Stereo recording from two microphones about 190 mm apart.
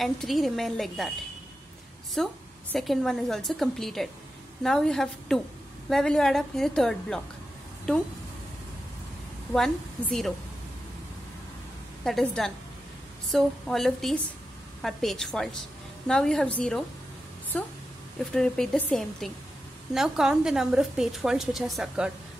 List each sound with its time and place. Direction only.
0.0 s a woman's voice: centre (ahead or behind)
2.2 s a woman's voice: centre (ahead or behind)
9.5 s a woman's voice: 5° left (ahead or behind)
12.0 s a woman's voice: centre (ahead or behind)